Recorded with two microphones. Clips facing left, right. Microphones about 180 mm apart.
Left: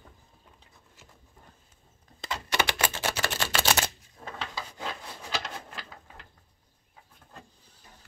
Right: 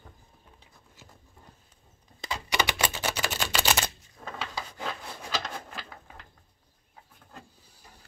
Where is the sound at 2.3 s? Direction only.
5° right (ahead or behind).